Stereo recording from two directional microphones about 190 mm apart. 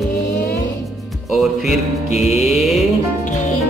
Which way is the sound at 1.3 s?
Centre (ahead or behind).